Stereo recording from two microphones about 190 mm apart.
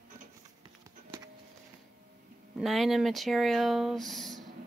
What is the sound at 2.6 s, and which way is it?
Speech, centre (ahead or behind).